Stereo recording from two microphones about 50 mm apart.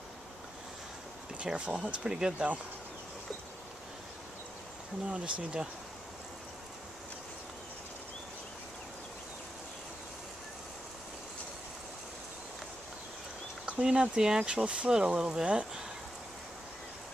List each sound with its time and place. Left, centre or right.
1.4 s speech: right
2.3 s speech: right
5.0 s speech: right
13.7 s speech: centre